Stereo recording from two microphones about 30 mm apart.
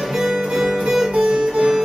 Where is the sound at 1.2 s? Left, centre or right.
Right.